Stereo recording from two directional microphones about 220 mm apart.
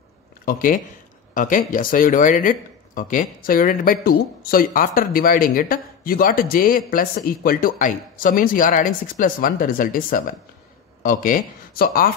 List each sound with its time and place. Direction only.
0.5 s speech: 40° left (ahead or behind)